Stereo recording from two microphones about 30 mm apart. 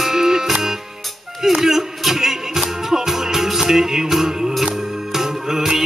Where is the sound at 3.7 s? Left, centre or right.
Centre.